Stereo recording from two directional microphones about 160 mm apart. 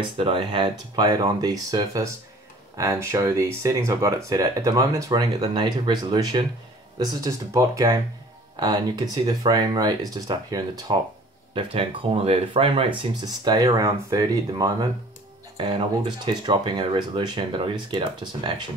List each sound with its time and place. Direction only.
0.2 s speech: 30° right (ahead or behind)